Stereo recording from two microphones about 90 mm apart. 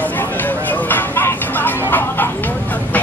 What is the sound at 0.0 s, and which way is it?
Vehicle, 20° left (ahead or behind).